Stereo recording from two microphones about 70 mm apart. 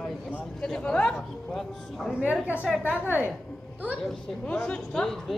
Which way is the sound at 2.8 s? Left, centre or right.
Right.